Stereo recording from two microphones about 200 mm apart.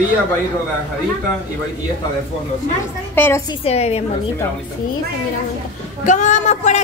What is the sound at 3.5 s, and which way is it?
Speech, 30° left (ahead or behind).